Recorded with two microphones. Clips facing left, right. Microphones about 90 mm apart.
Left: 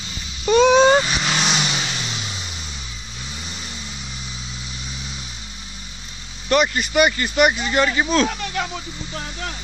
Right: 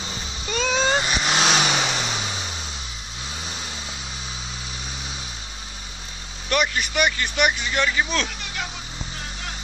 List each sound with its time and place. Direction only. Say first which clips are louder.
0.5 s vehicle: left 11 dB; 20° left (ahead or behind)
1.0 s vehicle: even; 10° right (ahead or behind)
1.4 s vehicle: right 2 dB; 50° right (ahead or behind)
2.0 s vehicle: right 3 dB; 45° right (ahead or behind)
6.5 s speech: left 5 dB; centre (ahead or behind)